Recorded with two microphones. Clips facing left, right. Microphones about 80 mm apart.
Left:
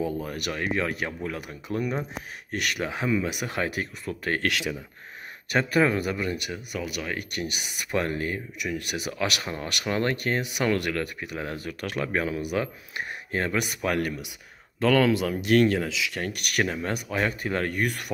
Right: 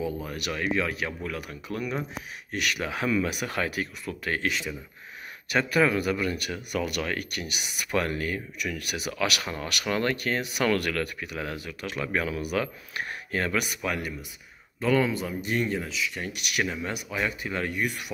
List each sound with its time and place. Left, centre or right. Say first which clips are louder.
0.0 s speech: left 2 dB; left
4.4 s speech: left 2 dB; left
5.5 s speech: left 1 dB; left
6.7 s speech: right 3 dB; centre
7.2 s speech: left 2 dB; left
11.8 s speech: left 3 dB; left
12.1 s speech: even; left
13.8 s speech: left 4 dB; left
14.8 s speech: left 3 dB; left
16.2 s speech: left 4 dB; left